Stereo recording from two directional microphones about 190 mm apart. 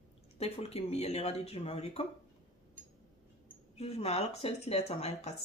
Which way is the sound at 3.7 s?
35° left (ahead or behind).